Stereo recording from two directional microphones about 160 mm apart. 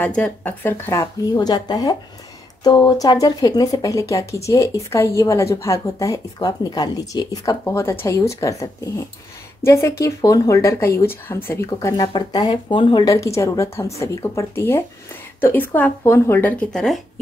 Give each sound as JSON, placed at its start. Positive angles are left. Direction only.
{"t": 0.0, "sound": "speech", "side_deg": 10}